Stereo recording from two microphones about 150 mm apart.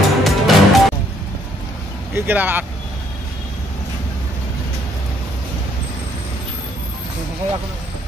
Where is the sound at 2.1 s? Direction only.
15° right (ahead or behind).